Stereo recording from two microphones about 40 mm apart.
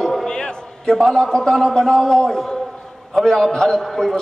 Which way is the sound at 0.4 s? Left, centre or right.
Left.